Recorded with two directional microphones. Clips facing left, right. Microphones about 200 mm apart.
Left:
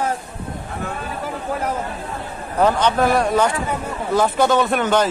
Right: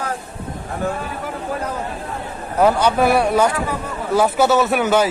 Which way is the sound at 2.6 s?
10° right (ahead or behind).